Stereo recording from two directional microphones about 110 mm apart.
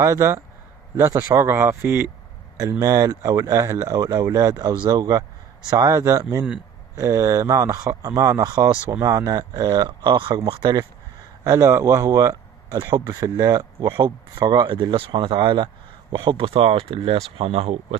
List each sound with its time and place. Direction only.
0.0 s speech: 30° right (ahead or behind)
9.8 s speech: 50° right (ahead or behind)
11.4 s speech: 25° right (ahead or behind)
13.7 s speech: 50° right (ahead or behind)